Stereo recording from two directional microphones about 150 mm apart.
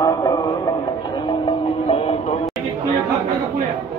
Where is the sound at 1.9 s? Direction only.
45° left (ahead or behind).